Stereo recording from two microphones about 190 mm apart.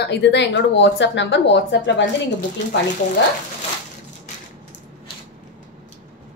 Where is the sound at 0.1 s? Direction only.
65° left (ahead or behind).